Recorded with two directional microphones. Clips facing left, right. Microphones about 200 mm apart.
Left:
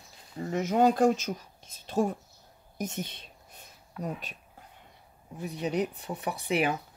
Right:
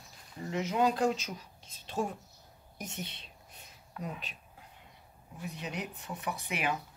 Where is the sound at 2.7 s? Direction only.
45° left (ahead or behind).